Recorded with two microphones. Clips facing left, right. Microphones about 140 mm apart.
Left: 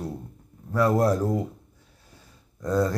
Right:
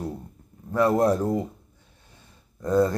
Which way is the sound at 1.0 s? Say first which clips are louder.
Right 1 dB; 20° right (ahead or behind).